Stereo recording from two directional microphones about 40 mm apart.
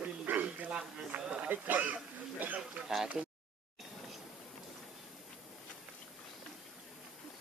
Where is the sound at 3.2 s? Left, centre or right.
Centre.